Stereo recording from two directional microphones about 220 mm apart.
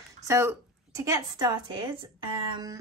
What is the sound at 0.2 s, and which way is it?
A woman's voice, 15° right (ahead or behind).